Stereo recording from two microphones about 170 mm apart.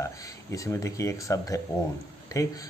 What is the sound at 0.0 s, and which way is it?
Speech, 20° left (ahead or behind).